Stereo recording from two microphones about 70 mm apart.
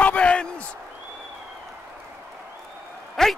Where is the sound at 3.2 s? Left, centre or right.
Centre.